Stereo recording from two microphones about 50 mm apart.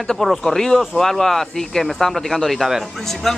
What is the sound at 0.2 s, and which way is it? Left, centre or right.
A man's voice, centre.